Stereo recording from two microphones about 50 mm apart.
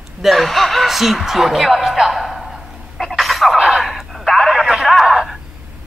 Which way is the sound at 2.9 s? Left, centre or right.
Centre.